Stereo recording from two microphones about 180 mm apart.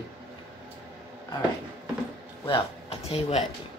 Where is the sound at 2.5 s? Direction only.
35° left (ahead or behind).